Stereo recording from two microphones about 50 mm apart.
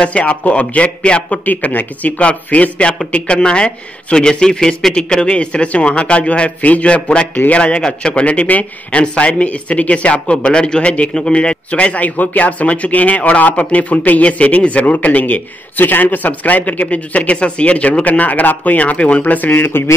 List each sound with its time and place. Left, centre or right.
0.0 s speech: left
1.4 s a man's voice: left